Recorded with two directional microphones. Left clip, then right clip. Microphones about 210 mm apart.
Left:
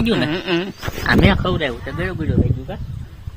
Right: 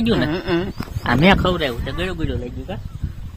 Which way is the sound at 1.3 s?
35° right (ahead or behind).